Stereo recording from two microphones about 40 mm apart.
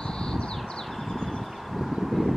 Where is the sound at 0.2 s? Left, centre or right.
Centre.